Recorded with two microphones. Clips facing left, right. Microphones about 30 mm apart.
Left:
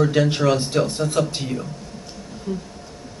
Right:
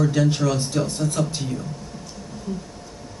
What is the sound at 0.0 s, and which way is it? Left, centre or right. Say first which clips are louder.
Speech: left 2 dB; left.